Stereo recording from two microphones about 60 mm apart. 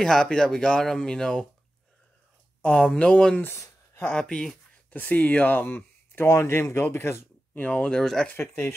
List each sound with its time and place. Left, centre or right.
0.0 s speech: centre
2.8 s speech: centre
6.2 s speech: left
7.5 s speech: left
7.9 s speech: centre
8.4 s speech: left